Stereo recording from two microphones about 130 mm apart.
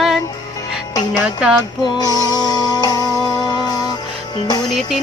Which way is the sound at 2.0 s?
30° left (ahead or behind).